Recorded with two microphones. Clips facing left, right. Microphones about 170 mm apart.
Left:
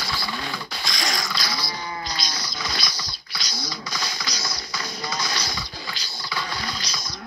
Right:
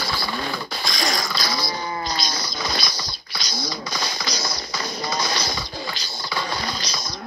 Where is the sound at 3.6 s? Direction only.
25° right (ahead or behind).